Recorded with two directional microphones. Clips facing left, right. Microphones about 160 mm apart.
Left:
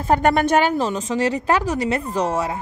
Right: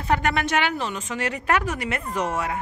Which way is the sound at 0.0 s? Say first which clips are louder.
Left 6 dB; 40° left (ahead or behind).